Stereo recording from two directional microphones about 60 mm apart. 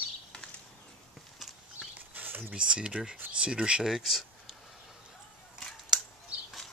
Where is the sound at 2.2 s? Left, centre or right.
Right.